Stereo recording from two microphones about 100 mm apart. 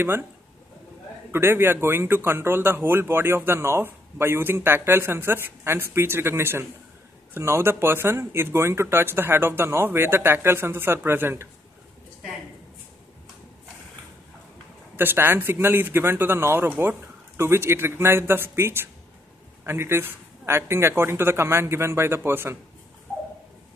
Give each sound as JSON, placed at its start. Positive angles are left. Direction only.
{"t": 1.3, "sound": "a man's voice", "side_deg": -25}
{"t": 15.0, "sound": "a man's voice", "side_deg": -20}